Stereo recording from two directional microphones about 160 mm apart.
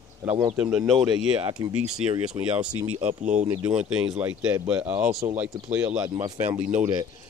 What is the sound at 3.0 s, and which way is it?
Speech, 50° right (ahead or behind).